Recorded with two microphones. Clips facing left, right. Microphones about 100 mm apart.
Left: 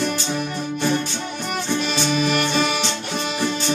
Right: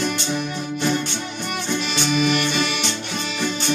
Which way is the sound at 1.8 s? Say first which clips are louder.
Right 1 dB; 40° left (ahead or behind).